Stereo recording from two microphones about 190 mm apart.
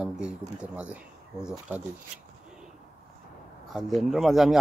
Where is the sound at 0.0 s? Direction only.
5° right (ahead or behind).